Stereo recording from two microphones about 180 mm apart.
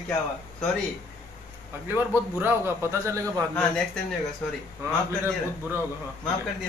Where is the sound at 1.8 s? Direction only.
10° right (ahead or behind).